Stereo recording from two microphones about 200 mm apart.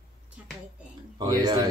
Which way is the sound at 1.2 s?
20° right (ahead or behind).